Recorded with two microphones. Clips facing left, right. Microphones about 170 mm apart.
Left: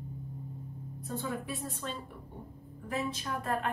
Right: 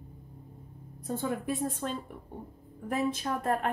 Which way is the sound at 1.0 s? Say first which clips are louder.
Right 5 dB; 50° right (ahead or behind).